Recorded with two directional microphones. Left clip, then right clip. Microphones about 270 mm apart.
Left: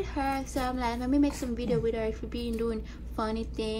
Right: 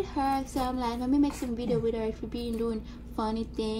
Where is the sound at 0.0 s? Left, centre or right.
Centre.